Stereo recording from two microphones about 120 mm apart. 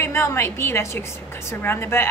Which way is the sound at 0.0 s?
20° left (ahead or behind).